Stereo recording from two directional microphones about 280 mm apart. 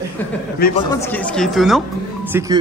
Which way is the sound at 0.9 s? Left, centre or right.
Centre.